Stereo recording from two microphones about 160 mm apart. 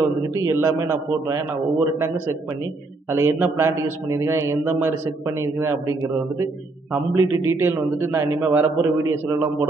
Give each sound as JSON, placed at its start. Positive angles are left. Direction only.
{"t": 0.3, "sound": "a man's voice", "side_deg": -20}